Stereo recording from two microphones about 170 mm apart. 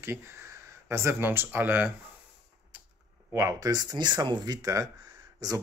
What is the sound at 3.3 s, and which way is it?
Speech, 15° right (ahead or behind).